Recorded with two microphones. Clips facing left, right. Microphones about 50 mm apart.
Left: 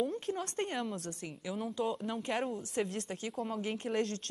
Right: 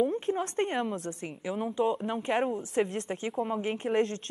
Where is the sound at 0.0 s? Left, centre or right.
Right.